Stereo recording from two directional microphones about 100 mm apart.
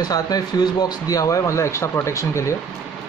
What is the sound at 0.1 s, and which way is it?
Speech, 40° left (ahead or behind).